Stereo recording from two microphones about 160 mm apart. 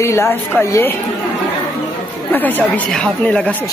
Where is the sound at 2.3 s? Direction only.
10° left (ahead or behind).